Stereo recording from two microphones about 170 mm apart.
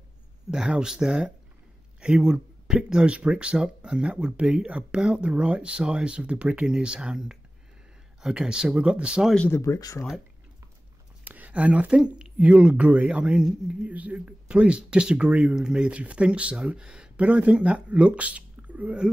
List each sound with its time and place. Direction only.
0.5 s speech: 5° right (ahead or behind)
9.3 s speech: 5° left (ahead or behind)
9.6 s speech: 20° left (ahead or behind)
11.2 s speech: 10° right (ahead or behind)